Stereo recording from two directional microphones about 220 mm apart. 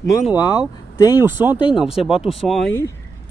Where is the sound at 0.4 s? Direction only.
15° left (ahead or behind).